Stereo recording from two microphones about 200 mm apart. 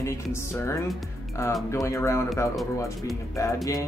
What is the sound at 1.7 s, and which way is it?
Speech, 15° left (ahead or behind).